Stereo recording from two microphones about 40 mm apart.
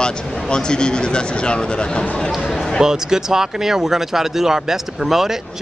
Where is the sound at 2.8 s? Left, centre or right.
Centre.